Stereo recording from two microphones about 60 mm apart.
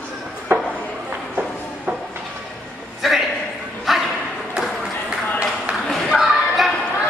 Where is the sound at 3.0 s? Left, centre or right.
Centre.